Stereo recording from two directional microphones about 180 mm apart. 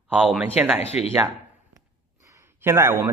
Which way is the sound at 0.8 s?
35° left (ahead or behind).